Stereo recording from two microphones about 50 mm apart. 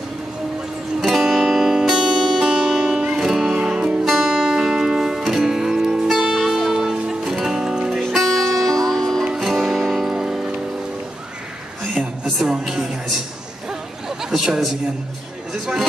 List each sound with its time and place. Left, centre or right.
1.0 s music: centre
3.2 s music: centre
4.0 s music: centre
8.0 s music: centre
11.8 s a sound: centre
15.6 s a man's voice: centre